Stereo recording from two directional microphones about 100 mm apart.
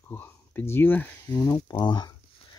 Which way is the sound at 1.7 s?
45° left (ahead or behind).